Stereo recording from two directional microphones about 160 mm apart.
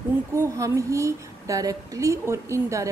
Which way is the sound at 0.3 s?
20° right (ahead or behind).